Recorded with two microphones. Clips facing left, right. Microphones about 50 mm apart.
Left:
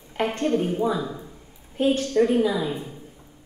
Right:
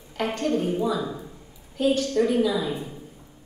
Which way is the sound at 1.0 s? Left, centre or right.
Centre.